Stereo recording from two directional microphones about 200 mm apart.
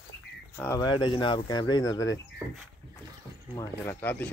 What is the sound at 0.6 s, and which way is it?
Speech, 15° left (ahead or behind).